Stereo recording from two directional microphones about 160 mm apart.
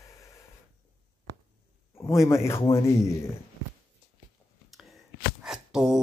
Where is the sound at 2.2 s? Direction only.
15° left (ahead or behind).